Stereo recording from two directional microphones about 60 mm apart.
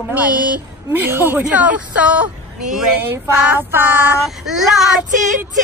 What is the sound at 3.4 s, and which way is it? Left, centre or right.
Female singing, right.